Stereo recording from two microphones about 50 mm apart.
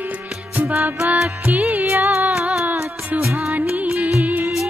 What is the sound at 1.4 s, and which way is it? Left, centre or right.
Music, right.